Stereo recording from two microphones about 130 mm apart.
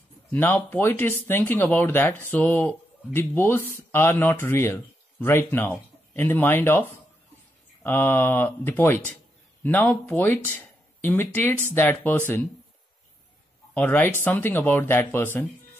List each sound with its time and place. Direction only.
0.3 s speech: 15° left (ahead or behind)
13.7 s speech: 15° left (ahead or behind)